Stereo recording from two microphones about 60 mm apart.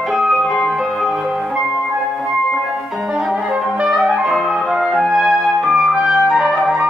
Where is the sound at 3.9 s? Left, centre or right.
Centre.